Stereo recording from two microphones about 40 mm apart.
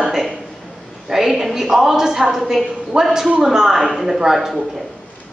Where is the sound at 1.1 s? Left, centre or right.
Centre.